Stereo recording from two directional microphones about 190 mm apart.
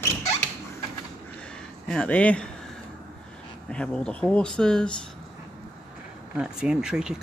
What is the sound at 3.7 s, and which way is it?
Speech, 5° left (ahead or behind).